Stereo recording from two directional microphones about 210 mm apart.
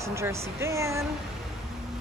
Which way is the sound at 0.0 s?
15° right (ahead or behind).